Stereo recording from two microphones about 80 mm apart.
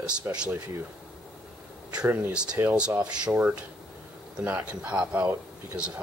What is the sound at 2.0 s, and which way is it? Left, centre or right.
Speech, centre.